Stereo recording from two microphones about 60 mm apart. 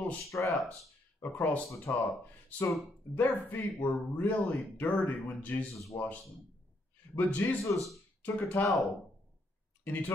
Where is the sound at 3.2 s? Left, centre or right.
Left.